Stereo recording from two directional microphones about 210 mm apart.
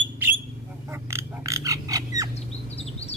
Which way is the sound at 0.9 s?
10° right (ahead or behind).